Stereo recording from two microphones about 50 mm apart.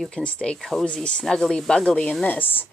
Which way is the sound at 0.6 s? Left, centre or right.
Centre.